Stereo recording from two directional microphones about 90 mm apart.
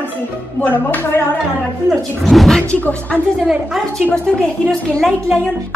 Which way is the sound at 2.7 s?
20° left (ahead or behind).